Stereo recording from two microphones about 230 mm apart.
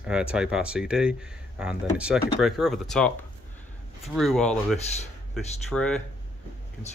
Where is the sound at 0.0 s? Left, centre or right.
Centre.